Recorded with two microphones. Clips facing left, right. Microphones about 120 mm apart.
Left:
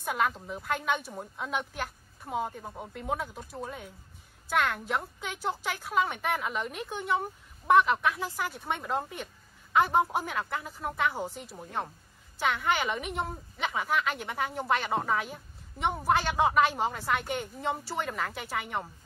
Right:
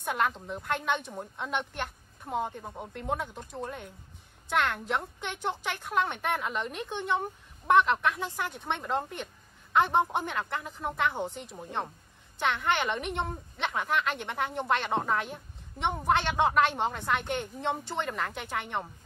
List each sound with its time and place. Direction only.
0.0 s a woman's voice: centre (ahead or behind)